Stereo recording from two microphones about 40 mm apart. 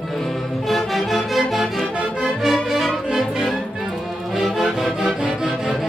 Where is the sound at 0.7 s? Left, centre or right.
Centre.